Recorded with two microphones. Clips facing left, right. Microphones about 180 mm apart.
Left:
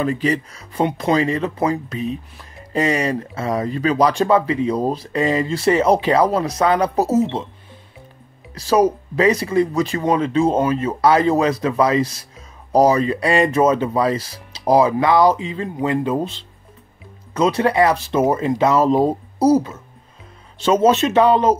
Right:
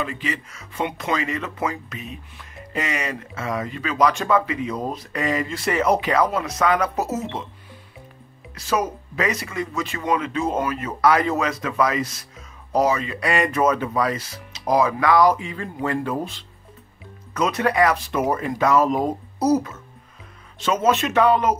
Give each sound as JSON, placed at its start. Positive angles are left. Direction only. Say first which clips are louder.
{"t": 0.0, "sound": "speech", "louder": "left 8 dB", "side_deg": 40}
{"t": 8.5, "sound": "speech", "louder": "left 8 dB", "side_deg": 35}